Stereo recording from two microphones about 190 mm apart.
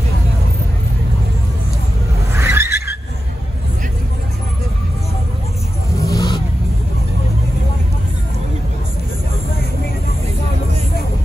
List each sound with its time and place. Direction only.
2.3 s skidding: 15° right (ahead or behind)
5.9 s vehicle: 20° left (ahead or behind)